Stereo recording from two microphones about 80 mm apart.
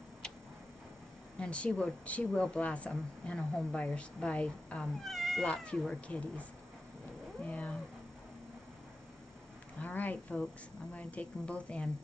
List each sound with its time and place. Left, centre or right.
1.4 s speech: centre
5.0 s speech: centre
5.9 s speech: centre
7.4 s speech: centre
9.8 s speech: left